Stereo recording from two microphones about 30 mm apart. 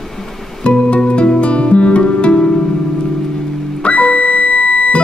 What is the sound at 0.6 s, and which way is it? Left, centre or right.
Music, left.